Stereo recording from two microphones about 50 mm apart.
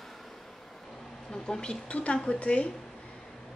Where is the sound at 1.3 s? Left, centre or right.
Centre.